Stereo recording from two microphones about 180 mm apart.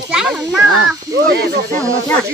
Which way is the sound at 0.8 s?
70° right (ahead or behind).